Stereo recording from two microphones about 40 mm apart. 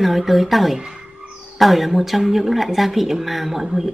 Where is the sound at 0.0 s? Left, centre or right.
Centre.